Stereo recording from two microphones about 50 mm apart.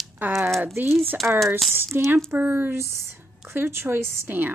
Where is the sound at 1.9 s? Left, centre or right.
Right.